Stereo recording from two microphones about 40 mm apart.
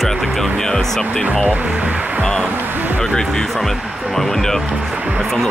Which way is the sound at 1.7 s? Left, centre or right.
Right.